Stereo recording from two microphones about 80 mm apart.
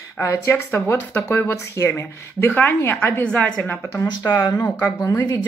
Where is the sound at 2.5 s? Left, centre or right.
Left.